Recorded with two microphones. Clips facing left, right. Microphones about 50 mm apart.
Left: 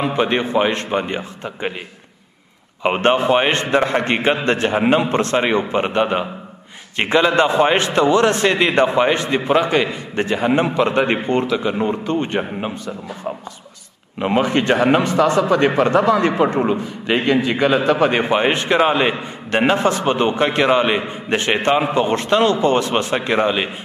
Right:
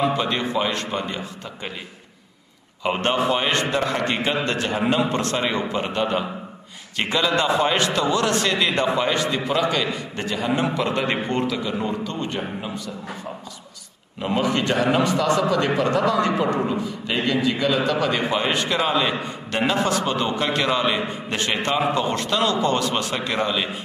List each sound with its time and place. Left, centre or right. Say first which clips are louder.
0.0 s a man's voice: left 3 dB; left
2.8 s a man's voice: left 5 dB; left